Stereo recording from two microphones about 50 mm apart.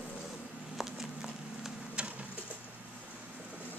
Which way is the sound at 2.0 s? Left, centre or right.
Right.